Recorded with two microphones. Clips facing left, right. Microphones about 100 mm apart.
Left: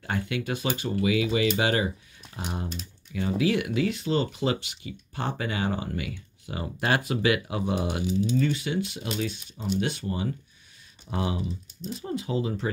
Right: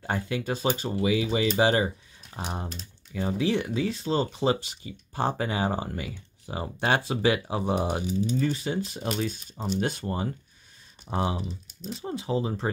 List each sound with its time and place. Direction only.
0.0 s speech: 35° right (ahead or behind)
11.1 s speech: 30° right (ahead or behind)